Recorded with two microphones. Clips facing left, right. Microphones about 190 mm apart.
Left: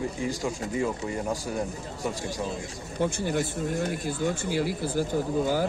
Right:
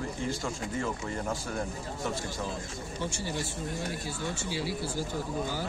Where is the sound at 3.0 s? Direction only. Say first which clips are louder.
Left 9 dB; 50° left (ahead or behind).